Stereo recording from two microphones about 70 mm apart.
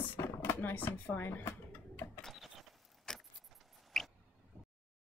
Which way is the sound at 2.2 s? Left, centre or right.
Centre.